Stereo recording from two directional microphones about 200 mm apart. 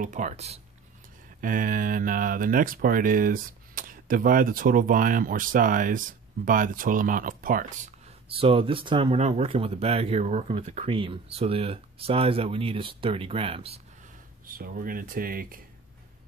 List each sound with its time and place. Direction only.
0.0 s speech: 40° right (ahead or behind)
8.3 s speech: 30° right (ahead or behind)
14.4 s speech: 45° right (ahead or behind)